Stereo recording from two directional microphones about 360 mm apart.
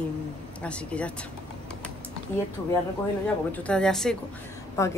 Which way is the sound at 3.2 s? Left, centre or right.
Centre.